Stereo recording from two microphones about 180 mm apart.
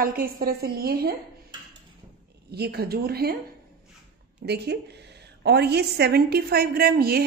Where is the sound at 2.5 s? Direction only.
60° right (ahead or behind).